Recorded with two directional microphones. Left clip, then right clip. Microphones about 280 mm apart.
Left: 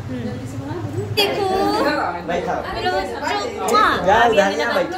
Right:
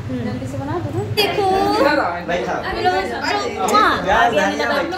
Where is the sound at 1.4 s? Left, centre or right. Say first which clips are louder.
Right 2 dB; centre.